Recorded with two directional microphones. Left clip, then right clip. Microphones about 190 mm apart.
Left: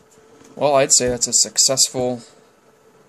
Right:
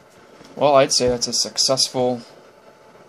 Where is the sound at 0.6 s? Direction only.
10° left (ahead or behind).